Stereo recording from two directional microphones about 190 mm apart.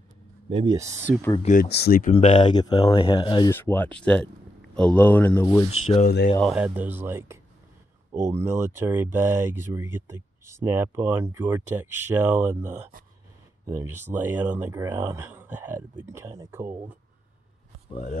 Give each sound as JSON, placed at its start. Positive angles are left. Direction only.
{"t": 0.7, "sound": "speech", "side_deg": -15}
{"t": 1.4, "sound": "speech", "side_deg": 40}
{"t": 1.7, "sound": "speech", "side_deg": 55}
{"t": 2.1, "sound": "speech", "side_deg": 35}
{"t": 2.4, "sound": "speech", "side_deg": 20}
{"t": 3.5, "sound": "speech", "side_deg": 10}
{"t": 5.7, "sound": "speech", "side_deg": 35}
{"t": 6.0, "sound": "speech", "side_deg": 55}
{"t": 6.4, "sound": "speech", "side_deg": -5}